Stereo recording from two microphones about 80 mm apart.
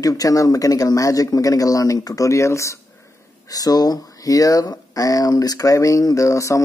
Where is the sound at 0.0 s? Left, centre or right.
Left.